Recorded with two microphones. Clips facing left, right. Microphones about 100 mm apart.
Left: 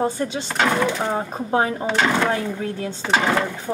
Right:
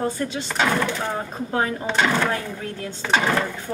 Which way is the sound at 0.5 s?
5° left (ahead or behind).